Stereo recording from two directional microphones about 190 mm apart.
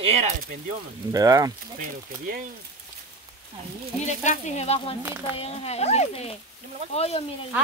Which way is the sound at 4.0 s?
40° left (ahead or behind).